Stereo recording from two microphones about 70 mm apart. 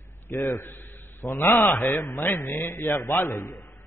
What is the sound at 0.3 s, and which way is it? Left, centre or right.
A man's voice, left.